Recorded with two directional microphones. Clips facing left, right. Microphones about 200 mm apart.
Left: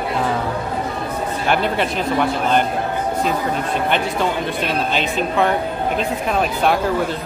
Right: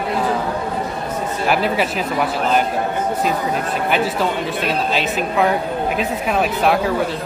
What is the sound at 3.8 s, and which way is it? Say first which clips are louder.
Speech: right 2 dB; 5° right (ahead or behind).